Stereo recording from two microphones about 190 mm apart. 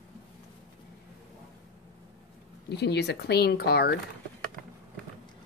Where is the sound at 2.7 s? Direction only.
60° left (ahead or behind).